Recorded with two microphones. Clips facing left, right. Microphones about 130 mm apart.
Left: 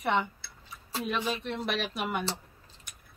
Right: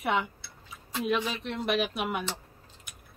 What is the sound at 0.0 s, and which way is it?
A woman's voice, centre (ahead or behind).